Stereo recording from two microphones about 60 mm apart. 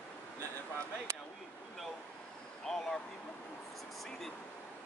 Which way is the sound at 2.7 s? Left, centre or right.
Centre.